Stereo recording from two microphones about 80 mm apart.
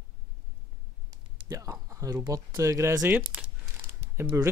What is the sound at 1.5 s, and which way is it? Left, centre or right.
Speech, right.